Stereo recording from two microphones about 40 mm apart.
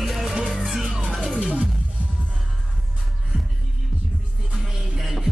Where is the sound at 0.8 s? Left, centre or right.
Right.